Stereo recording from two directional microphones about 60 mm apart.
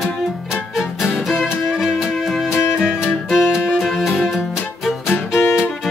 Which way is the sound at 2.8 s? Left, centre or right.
Centre.